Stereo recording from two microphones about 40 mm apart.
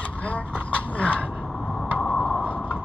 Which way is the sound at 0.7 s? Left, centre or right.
Left.